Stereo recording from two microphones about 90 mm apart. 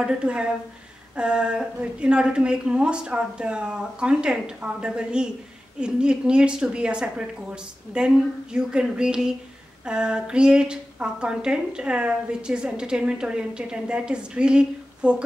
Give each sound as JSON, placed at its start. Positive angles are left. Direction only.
{"t": 0.0, "sound": "a woman's voice", "side_deg": -10}